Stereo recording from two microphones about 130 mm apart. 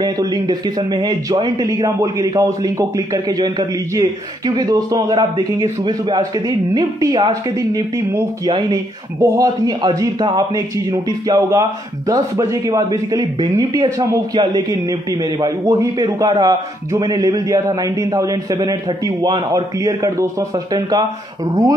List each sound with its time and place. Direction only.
0.0 s speech: 30° right (ahead or behind)
9.2 s a man's voice: 25° right (ahead or behind)